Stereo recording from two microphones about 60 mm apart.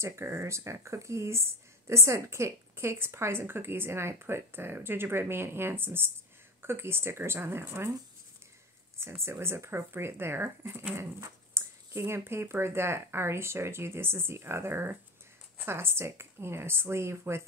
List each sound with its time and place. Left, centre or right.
0.0 s a woman's voice: right
9.0 s speech: right